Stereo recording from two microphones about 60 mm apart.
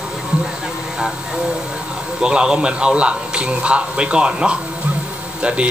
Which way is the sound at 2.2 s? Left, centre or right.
Centre.